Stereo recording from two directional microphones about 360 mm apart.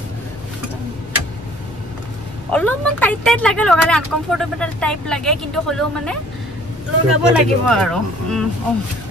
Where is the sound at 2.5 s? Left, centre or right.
Centre.